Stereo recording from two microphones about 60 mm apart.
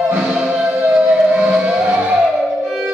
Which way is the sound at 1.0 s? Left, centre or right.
Right.